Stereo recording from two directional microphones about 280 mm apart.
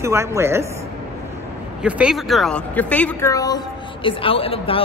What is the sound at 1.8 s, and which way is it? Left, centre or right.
A woman's voice, centre.